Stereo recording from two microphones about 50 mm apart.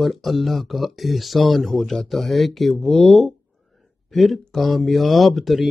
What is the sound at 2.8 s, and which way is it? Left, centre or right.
Speech, centre.